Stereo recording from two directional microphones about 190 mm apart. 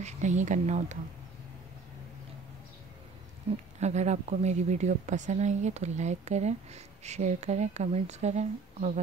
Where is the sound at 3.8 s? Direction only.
35° right (ahead or behind).